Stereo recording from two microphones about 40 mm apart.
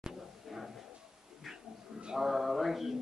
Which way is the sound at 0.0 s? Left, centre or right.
Centre.